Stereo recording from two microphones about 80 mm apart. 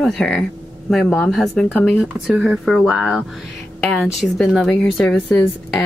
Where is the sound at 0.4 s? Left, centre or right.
Centre.